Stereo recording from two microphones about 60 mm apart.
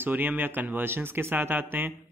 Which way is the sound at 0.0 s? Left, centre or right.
Right.